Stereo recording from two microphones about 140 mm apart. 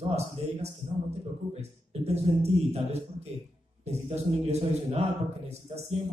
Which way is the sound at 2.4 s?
50° right (ahead or behind).